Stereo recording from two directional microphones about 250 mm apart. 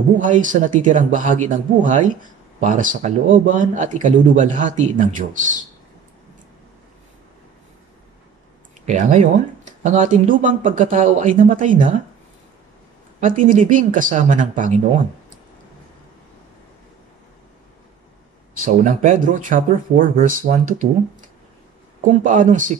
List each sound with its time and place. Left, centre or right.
0.2 s speech: right
8.8 s speech: right
13.2 s speech: right
18.6 s speech: right
22.2 s speech: right